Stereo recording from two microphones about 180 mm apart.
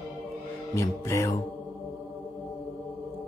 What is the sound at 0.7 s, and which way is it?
Speech, 15° left (ahead or behind).